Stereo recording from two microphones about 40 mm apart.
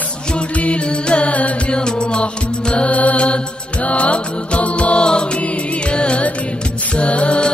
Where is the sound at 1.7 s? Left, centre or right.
Left.